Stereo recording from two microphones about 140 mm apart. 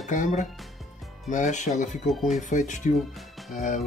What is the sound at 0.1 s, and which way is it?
Speech, 65° left (ahead or behind).